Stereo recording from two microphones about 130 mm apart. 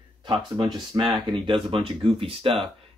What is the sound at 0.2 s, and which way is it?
Speech, 35° right (ahead or behind).